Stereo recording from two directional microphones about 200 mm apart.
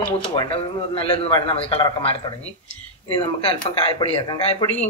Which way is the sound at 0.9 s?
25° left (ahead or behind).